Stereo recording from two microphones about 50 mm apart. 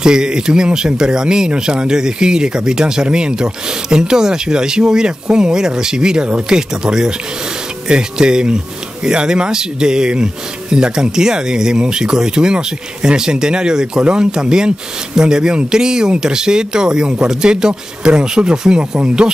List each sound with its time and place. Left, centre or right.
0.0 s speech: centre